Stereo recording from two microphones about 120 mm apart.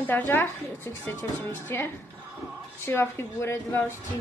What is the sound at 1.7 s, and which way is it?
A woman's voice, 20° left (ahead or behind).